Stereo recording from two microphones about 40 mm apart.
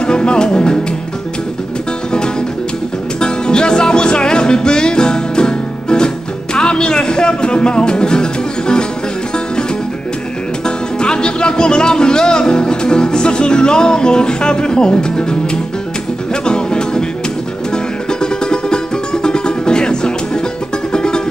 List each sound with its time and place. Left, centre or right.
0.0 s music: left
3.2 s music: left
11.0 s music: left
16.4 s music: left
18.2 s music: left